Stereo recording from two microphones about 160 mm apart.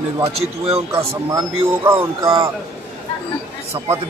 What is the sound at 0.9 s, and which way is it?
Speech, 15° right (ahead or behind).